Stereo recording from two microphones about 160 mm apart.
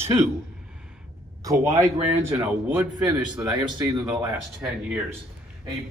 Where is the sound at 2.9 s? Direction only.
25° right (ahead or behind).